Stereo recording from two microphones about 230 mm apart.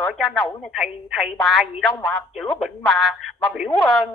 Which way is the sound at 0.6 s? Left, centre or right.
Centre.